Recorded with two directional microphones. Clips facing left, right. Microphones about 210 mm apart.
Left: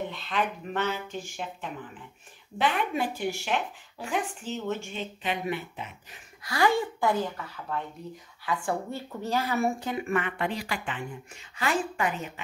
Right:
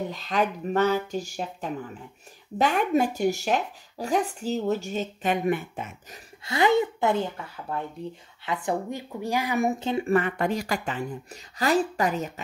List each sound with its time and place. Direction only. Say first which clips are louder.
0.1 s speech: right 4 dB; 40° right (ahead or behind)
6.4 s speech: right 3 dB; 20° right (ahead or behind); by 12.3 s 40° right (ahead or behind)